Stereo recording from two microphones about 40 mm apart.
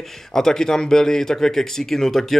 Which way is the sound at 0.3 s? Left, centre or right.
Centre.